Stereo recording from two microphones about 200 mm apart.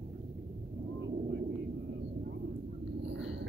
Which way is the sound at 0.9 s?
65° right (ahead or behind).